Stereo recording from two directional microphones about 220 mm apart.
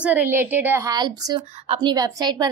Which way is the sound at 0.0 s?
5° right (ahead or behind).